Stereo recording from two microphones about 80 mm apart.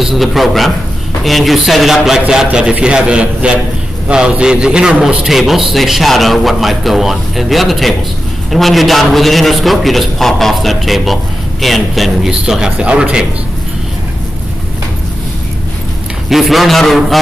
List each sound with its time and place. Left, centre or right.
0.0 s a man's voice: centre
16.3 s a man's voice: centre